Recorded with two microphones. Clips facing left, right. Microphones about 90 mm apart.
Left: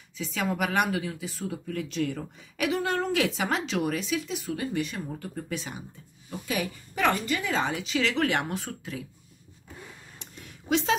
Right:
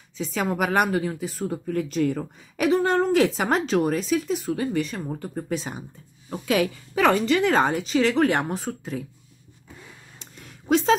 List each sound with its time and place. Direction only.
0.2 s speech: 40° right (ahead or behind)
6.4 s a woman's voice: 90° right
7.2 s speech: 70° right (ahead or behind); by 9.0 s 35° right (ahead or behind)
10.1 s a sound: 35° right (ahead or behind)